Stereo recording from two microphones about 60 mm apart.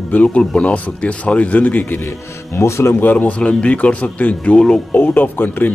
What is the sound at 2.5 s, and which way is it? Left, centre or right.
Speech, left.